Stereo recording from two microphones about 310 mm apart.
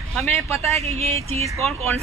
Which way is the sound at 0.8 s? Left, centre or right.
Right.